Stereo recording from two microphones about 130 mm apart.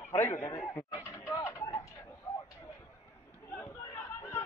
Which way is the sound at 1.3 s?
25° left (ahead or behind).